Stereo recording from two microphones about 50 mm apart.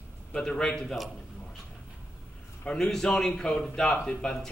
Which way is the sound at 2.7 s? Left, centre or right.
Centre.